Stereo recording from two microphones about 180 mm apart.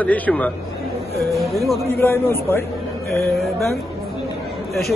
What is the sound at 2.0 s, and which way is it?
Speech, 15° left (ahead or behind).